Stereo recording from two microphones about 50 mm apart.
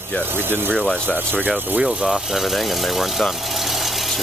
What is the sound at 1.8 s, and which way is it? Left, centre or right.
Speech, centre.